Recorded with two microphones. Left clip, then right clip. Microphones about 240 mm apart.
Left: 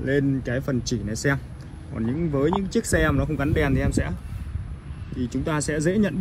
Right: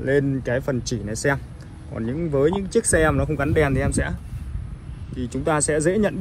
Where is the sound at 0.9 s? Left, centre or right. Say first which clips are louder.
Right 2 dB; centre.